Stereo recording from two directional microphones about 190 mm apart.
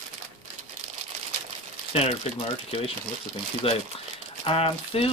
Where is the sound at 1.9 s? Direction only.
35° left (ahead or behind).